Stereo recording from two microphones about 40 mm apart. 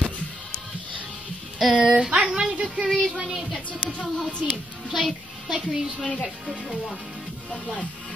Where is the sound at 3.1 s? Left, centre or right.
Centre.